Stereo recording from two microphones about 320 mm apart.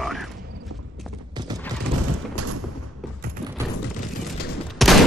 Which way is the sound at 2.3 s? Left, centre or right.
Right.